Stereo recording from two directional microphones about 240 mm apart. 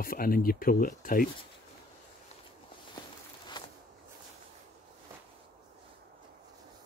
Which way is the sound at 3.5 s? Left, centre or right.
Centre.